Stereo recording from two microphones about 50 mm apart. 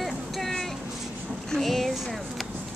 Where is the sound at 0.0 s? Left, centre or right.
Centre.